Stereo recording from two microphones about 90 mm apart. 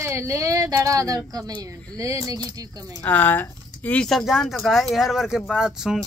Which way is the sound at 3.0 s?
20° left (ahead or behind).